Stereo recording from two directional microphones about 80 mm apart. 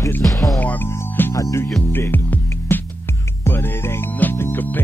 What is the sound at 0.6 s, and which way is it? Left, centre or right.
Music, left.